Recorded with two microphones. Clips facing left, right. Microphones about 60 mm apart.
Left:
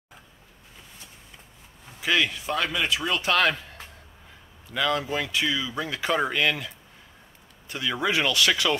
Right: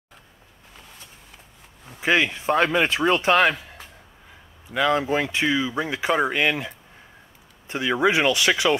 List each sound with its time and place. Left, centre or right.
1.9 s speech: right
4.6 s speech: right